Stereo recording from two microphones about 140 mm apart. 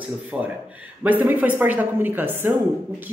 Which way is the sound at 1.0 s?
10° right (ahead or behind).